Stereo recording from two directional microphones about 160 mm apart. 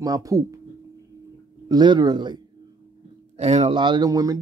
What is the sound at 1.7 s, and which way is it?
Speech, 25° right (ahead or behind).